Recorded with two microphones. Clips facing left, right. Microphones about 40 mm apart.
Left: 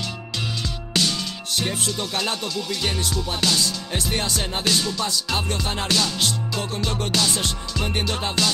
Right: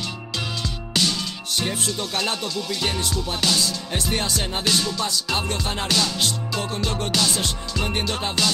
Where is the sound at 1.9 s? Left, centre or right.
Centre.